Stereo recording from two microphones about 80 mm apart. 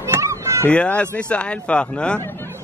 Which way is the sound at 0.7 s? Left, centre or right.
Centre.